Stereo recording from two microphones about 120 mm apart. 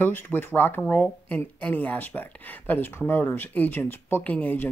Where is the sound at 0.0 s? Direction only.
20° left (ahead or behind).